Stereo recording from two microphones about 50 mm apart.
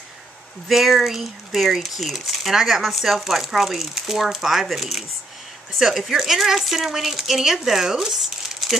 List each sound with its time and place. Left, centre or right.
0.7 s speech: centre